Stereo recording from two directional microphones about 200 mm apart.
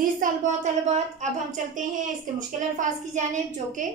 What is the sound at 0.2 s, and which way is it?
A woman's voice, 35° right (ahead or behind).